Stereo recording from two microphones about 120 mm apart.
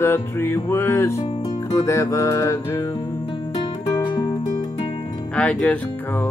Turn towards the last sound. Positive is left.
turn(degrees=15)  # may be behind; listen again after turning